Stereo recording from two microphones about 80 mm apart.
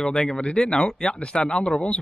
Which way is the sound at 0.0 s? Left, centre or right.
Centre.